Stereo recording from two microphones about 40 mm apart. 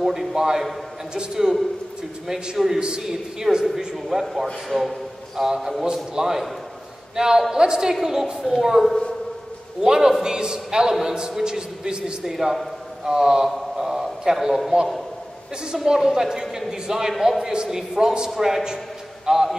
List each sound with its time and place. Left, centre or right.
0.0 s a man's voice: centre
2.5 s a man's voice: centre
5.4 s a man's voice: centre
9.8 s a man's voice: centre
12.2 s a man's voice: centre
13.5 s a sound: centre
15.6 s a man's voice: centre